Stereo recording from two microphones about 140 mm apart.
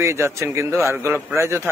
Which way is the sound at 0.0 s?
20° right (ahead or behind).